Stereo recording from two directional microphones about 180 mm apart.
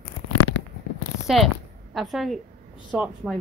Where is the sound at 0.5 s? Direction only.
90° left.